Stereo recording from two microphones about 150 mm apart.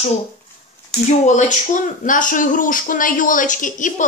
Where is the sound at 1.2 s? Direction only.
55° left (ahead or behind).